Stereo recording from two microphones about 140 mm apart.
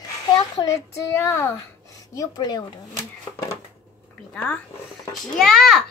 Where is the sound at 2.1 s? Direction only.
30° left (ahead or behind).